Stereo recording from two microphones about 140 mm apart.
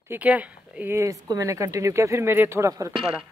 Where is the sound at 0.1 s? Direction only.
10° right (ahead or behind).